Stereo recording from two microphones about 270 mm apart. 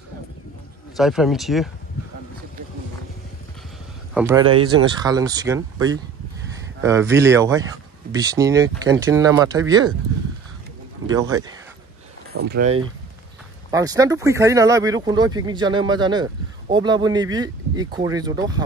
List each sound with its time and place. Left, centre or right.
0.9 s speech: centre
4.1 s speech: centre
11.1 s speech: centre
12.3 s speech: right
12.6 s speech: right